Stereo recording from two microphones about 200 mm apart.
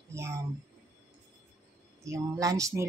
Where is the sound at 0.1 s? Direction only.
15° right (ahead or behind).